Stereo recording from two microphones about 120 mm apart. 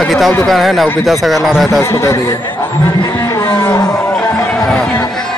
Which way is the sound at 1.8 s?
20° left (ahead or behind).